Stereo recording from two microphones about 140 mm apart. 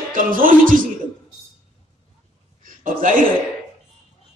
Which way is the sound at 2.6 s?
75° right (ahead or behind).